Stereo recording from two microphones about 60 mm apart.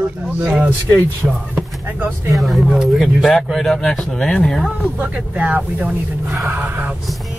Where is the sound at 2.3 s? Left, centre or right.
Centre.